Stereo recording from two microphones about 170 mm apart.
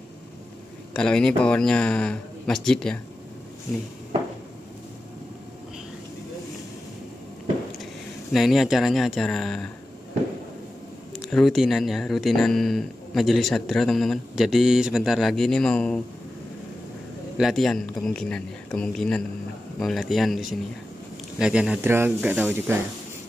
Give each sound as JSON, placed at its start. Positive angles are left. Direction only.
{"t": 0.9, "sound": "speech", "side_deg": 5}
{"t": 8.3, "sound": "speech", "side_deg": 0}
{"t": 11.1, "sound": "speech", "side_deg": 0}
{"t": 17.4, "sound": "speech", "side_deg": 0}